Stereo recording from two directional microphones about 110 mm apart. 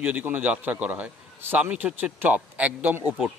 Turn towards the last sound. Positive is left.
turn(degrees=-15)  # may be behind; listen again after turning